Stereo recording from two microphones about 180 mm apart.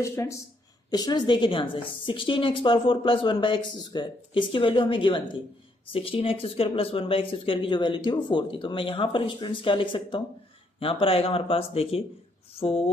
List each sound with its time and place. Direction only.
0.0 s a woman's voice: 15° left (ahead or behind); by 12.9 s 35° left (ahead or behind)